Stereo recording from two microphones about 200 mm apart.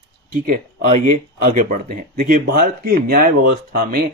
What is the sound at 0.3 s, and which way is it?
Speech, 40° right (ahead or behind).